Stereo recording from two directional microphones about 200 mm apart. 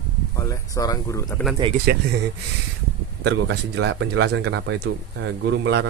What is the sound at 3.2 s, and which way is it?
Speech, 60° right (ahead or behind).